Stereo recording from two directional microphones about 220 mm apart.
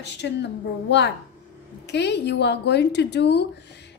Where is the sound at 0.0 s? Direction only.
50° left (ahead or behind).